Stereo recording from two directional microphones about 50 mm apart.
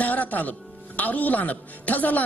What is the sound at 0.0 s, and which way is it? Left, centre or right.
A man's voice, left.